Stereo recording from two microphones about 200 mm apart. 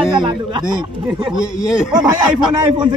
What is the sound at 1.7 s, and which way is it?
Speech, 5° right (ahead or behind).